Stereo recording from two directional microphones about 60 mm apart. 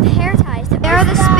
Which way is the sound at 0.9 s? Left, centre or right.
Centre.